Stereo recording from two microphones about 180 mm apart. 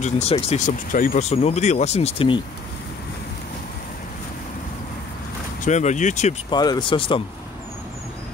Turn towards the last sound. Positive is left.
turn(degrees=30)  # may be behind; listen again after turning